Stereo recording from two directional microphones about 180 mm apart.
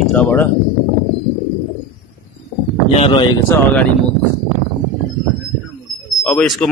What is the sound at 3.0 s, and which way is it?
Speech, 25° left (ahead or behind).